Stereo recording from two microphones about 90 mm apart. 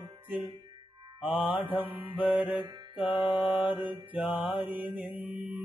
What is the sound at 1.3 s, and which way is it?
Mantra, 20° right (ahead or behind).